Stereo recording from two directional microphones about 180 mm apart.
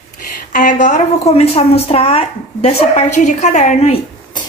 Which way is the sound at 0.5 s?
45° left (ahead or behind).